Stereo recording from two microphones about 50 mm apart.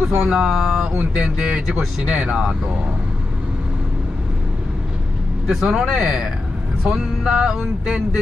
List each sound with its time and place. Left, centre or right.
0.2 s speech: centre
5.5 s speech: centre